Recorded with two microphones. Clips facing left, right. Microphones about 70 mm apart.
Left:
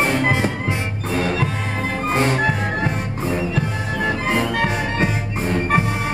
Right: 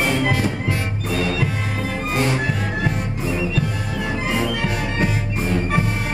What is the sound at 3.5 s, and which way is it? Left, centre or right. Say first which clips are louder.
Music: left 1 dB; left.